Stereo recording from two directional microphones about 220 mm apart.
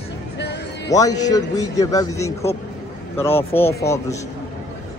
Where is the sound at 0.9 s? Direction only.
15° left (ahead or behind).